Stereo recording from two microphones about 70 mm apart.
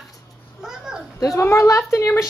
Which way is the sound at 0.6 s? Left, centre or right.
Centre.